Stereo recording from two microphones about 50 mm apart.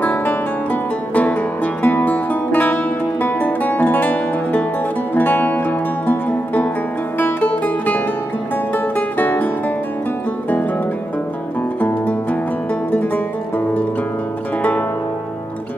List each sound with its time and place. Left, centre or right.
0.0 s music: left
7.2 s music: left
11.8 s music: left
14.6 s music: left